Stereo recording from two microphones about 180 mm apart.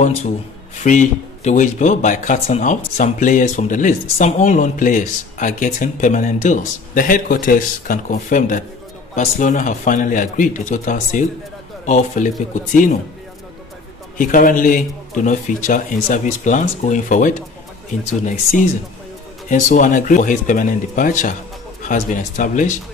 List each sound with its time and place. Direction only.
0.8 s speech: 45° left (ahead or behind)
14.1 s speech: 50° left (ahead or behind)
19.7 s speech: 45° left (ahead or behind)